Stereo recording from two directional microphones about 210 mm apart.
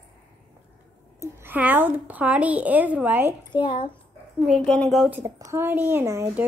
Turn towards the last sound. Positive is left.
turn(degrees=-10)  # may be behind; listen again after turning